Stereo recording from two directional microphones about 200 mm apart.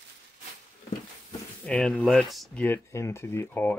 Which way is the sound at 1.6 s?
5° left (ahead or behind).